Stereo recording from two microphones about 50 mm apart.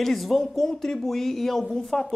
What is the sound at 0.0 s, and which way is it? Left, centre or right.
Speech, centre.